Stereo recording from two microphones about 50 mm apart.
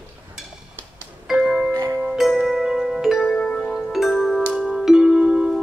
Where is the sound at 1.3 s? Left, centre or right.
Centre.